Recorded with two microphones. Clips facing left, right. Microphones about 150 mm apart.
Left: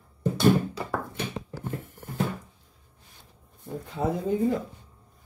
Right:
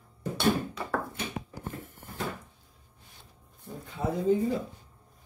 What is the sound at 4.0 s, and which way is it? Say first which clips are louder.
Speech: left 4 dB; 65° left (ahead or behind).